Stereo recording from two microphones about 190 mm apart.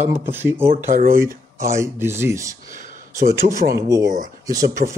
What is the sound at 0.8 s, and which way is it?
Speech, 45° right (ahead or behind).